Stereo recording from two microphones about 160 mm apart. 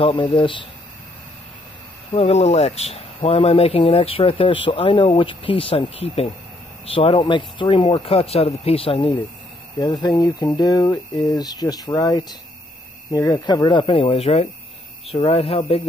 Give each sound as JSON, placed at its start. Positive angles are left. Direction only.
{"t": 0.0, "sound": "speech", "side_deg": 35}
{"t": 2.1, "sound": "speech", "side_deg": 40}